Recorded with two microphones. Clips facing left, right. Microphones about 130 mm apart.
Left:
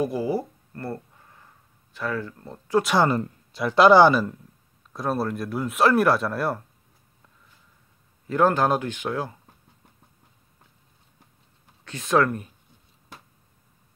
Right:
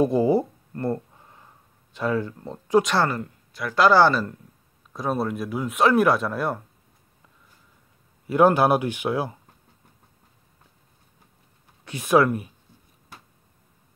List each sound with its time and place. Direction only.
0.0 s a sound: 25° right (ahead or behind)
2.0 s speech: 20° right (ahead or behind)
2.8 s speech: 10° left (ahead or behind)
3.1 s speech: 25° left (ahead or behind)
4.9 s speech: centre (ahead or behind)
8.3 s speech: 15° right (ahead or behind)
11.8 s speech: 15° right (ahead or behind)